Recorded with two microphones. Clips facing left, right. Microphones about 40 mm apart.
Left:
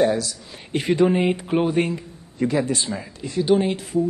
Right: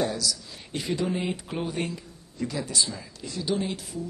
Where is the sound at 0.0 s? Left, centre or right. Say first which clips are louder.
Left 8 dB; left.